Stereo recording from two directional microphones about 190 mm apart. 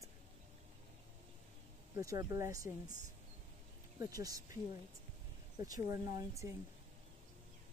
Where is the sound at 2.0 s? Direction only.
15° right (ahead or behind).